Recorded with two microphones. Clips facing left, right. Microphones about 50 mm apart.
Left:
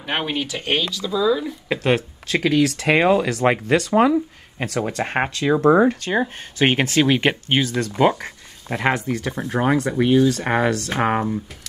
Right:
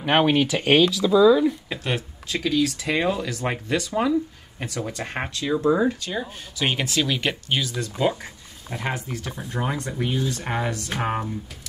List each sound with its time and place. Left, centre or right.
0.0 s speech: centre
1.7 s speech: left
4.8 s speech: left
7.7 s speech: left
11.0 s speech: left